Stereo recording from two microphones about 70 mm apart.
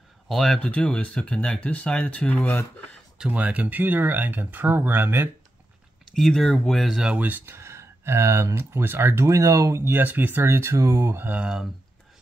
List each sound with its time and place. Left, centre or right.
0.3 s speech: centre
0.6 s speech: centre
3.3 s speech: centre
6.1 s speech: centre
6.8 s speech: centre
7.2 s speech: right
9.2 s speech: right
9.9 s speech: right
10.4 s speech: right
11.2 s speech: centre